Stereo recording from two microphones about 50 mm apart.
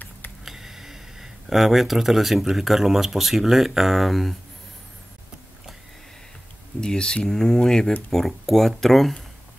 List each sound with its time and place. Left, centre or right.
0.5 s speech: centre
6.8 s speech: centre